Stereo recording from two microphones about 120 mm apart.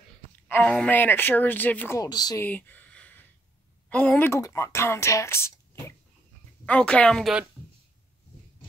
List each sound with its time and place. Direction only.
0.5 s speech: 10° left (ahead or behind)
2.0 s speech: 35° left (ahead or behind)
2.4 s a sound: 15° left (ahead or behind)
3.9 s speech: 15° left (ahead or behind)
6.6 s speech: 10° left (ahead or behind)